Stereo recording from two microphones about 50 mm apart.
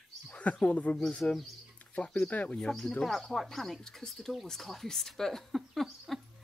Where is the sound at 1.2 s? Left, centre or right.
Left.